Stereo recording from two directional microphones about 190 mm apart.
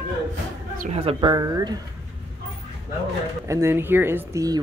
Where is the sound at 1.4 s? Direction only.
20° right (ahead or behind).